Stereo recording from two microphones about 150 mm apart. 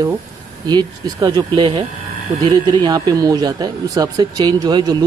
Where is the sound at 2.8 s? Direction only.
25° right (ahead or behind).